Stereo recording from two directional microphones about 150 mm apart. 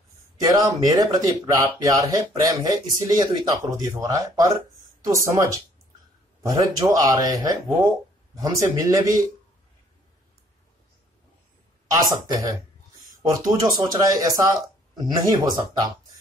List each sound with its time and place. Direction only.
0.4 s speech: 20° right (ahead or behind)
11.9 s speech: 25° right (ahead or behind)